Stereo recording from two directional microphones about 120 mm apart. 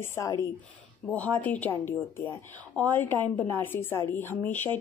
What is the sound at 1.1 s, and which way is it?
Speech, 10° left (ahead or behind).